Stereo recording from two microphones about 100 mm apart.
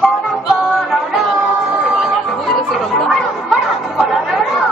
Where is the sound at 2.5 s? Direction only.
Centre (ahead or behind).